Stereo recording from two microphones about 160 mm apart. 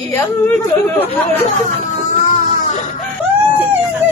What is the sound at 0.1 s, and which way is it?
Speech, 10° left (ahead or behind).